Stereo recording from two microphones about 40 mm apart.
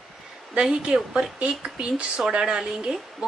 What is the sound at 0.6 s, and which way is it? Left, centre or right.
Speech, right.